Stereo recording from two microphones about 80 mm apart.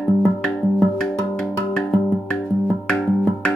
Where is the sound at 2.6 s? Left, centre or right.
Centre.